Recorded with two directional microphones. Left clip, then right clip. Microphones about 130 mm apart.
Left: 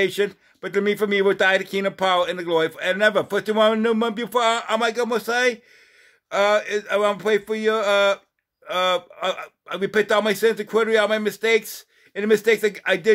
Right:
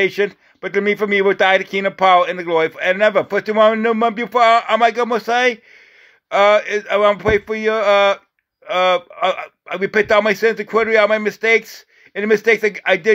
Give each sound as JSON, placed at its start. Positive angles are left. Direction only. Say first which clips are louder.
{"t": 0.0, "sound": "a man's voice", "louder": "right 4 dB", "side_deg": -15}